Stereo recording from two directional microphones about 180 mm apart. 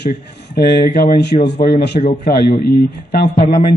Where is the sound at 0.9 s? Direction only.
60° left (ahead or behind).